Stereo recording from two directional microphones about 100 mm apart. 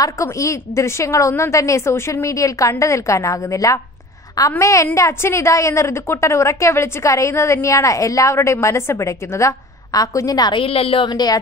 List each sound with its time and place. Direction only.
0.0 s a woman's voice: 30° left (ahead or behind)
10.5 s a woman's voice: 70° left (ahead or behind)
11.1 s a woman's voice: 40° left (ahead or behind)